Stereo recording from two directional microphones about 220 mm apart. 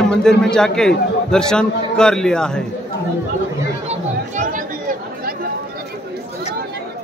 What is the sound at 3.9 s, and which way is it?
Chatter, 35° right (ahead or behind).